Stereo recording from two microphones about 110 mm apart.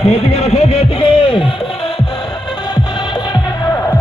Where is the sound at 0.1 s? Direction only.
75° left (ahead or behind); by 1.5 s 55° left (ahead or behind).